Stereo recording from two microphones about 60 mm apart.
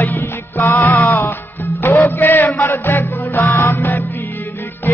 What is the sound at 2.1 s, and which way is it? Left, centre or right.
Music, left.